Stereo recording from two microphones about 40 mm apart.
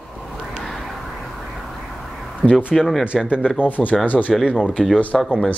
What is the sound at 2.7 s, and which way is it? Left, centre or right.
Speech, centre.